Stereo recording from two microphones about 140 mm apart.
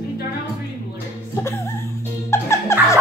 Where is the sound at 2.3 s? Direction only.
20° left (ahead or behind).